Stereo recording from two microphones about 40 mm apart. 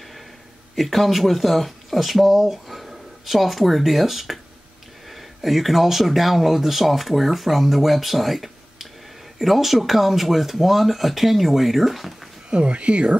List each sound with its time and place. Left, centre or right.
0.7 s speech: centre
12.4 s speech: right